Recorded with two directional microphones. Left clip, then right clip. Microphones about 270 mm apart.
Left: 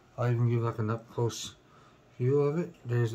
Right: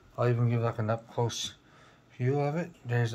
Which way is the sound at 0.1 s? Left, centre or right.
Centre.